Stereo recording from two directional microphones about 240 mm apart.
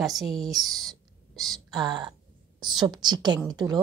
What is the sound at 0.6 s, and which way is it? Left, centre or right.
Whispering, centre.